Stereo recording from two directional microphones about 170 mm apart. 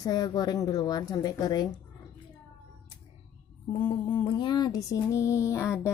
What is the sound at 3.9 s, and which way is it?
A woman's voice, 30° left (ahead or behind).